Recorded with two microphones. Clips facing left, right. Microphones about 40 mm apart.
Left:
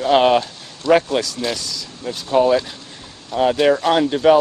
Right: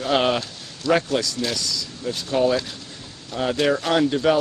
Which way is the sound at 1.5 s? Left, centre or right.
Left.